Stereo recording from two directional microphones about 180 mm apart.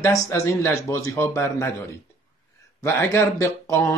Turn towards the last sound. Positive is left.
turn(degrees=15)  # may be behind; listen again after turning